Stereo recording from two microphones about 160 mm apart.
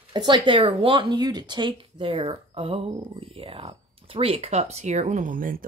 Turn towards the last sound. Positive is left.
turn(degrees=-55)  # may be behind; listen again after turning